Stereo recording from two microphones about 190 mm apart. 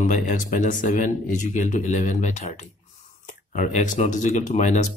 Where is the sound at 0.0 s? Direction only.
45° left (ahead or behind).